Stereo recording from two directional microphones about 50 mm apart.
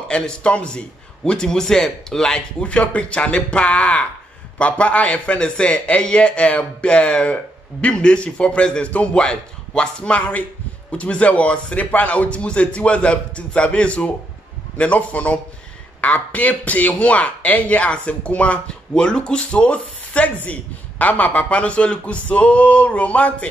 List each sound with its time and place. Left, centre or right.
0.1 s a man's voice: centre